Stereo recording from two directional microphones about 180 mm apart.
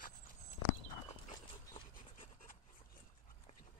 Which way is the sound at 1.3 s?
25° left (ahead or behind).